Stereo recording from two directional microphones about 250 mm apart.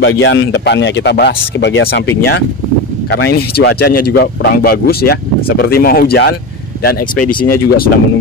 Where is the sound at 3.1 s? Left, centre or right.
Left.